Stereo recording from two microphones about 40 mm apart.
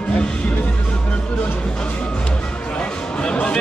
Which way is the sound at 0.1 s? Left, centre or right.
Left.